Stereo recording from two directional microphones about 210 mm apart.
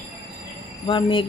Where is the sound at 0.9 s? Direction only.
25° left (ahead or behind).